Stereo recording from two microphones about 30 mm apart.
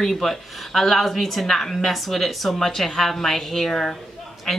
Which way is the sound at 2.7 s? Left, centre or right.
Centre.